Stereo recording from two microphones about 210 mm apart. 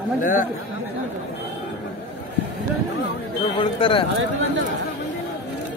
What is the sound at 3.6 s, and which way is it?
Speech, 25° left (ahead or behind).